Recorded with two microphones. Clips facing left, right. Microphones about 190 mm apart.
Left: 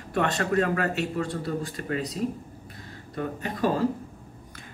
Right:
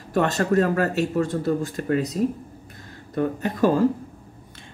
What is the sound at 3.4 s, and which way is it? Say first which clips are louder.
Speech: right 5 dB; 45° right (ahead or behind).